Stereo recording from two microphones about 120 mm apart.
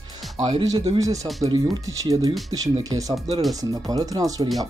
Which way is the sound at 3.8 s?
30° right (ahead or behind).